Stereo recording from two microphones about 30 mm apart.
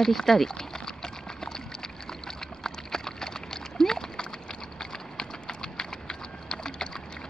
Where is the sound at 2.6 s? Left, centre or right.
Centre.